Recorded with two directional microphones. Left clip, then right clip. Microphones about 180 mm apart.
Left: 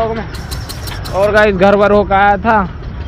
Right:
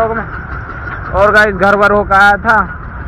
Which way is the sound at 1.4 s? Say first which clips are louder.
Even; 25° left (ahead or behind).